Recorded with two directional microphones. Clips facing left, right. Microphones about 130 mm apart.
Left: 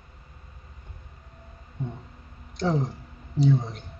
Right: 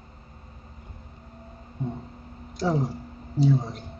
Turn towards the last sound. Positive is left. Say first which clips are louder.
# even
turn(degrees=-5)  # may be behind; listen again after turning